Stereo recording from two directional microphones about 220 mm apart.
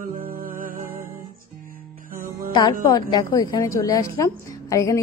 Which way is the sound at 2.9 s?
20° left (ahead or behind).